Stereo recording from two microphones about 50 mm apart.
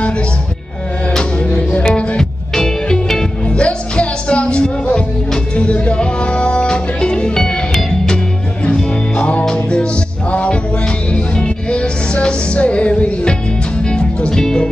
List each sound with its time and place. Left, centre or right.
1.1 s music: centre
8.6 s music: left